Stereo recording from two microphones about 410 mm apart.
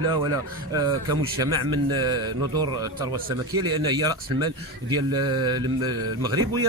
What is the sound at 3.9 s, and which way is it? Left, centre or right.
Speech, centre.